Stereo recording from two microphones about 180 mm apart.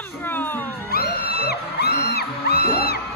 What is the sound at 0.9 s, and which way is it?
Music, 60° left (ahead or behind).